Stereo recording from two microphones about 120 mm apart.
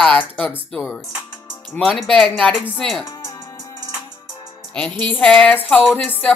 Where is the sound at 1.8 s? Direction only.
Centre (ahead or behind).